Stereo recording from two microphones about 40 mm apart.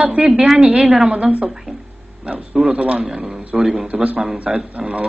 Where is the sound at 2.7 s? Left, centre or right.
Right.